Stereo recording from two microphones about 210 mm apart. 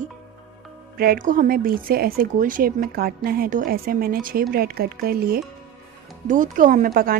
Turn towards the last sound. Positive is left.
turn(degrees=-45)  # may be behind; listen again after turning